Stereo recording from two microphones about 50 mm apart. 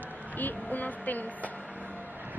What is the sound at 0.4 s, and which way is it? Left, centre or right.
Speech, left.